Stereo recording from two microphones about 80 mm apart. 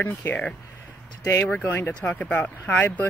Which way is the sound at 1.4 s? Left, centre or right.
Left.